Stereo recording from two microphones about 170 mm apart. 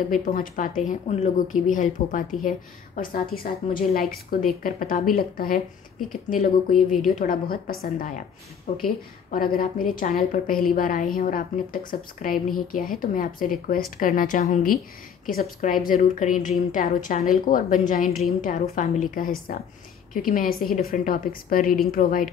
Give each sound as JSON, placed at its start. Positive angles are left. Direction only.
{"t": 0.1, "sound": "a woman's voice", "side_deg": 50}
{"t": 6.7, "sound": "speech", "side_deg": 0}
{"t": 7.1, "sound": "a woman's voice", "side_deg": 55}